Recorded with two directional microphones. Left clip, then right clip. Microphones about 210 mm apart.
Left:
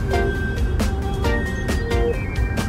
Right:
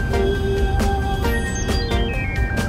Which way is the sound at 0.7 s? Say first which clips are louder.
Right 4 dB; centre (ahead or behind).